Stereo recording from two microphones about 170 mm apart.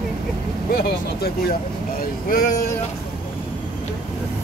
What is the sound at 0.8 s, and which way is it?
Speech, 65° left (ahead or behind).